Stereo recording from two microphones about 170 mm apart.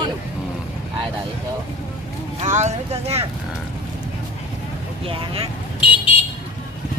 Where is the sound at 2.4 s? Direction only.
45° right (ahead or behind).